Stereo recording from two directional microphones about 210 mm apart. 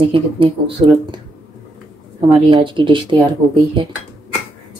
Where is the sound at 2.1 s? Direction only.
25° right (ahead or behind).